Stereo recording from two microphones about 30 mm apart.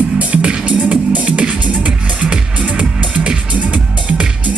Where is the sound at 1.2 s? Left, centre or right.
Right.